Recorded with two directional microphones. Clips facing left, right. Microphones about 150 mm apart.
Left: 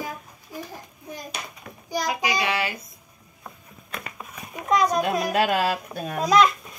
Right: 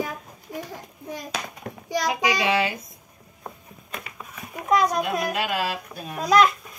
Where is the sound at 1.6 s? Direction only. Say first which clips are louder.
Right 7 dB; 50° right (ahead or behind).